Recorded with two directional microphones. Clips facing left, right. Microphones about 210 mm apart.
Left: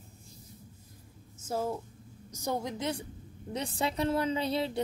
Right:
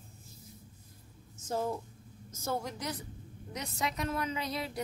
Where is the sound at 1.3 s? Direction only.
10° left (ahead or behind); by 4.8 s 30° left (ahead or behind).